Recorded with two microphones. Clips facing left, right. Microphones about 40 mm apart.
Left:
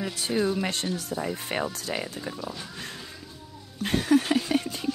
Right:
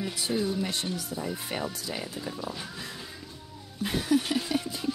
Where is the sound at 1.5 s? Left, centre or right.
Left.